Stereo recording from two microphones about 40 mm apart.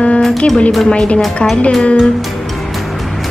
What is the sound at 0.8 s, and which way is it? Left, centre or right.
Speech, left.